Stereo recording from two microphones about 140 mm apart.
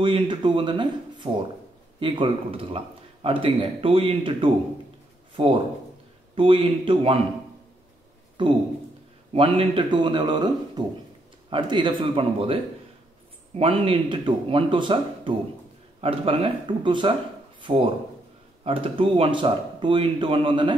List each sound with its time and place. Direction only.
0.0 s a man's voice: 35° right (ahead or behind)
8.4 s a man's voice: 35° right (ahead or behind)
11.5 s a man's voice: 35° right (ahead or behind)
13.6 s a man's voice: 40° right (ahead or behind)